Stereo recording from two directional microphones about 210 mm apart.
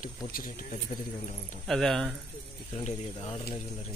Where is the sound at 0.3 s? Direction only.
40° left (ahead or behind).